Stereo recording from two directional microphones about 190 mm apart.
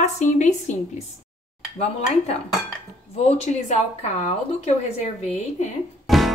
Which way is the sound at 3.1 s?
35° left (ahead or behind).